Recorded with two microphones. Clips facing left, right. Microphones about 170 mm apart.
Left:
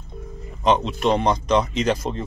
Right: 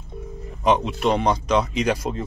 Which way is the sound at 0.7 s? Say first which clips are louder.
Left 1 dB; 5° right (ahead or behind).